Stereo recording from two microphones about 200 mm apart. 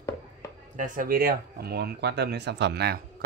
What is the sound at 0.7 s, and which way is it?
Speech, 45° right (ahead or behind).